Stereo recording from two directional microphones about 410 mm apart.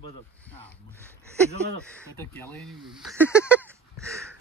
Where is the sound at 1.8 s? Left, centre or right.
Centre.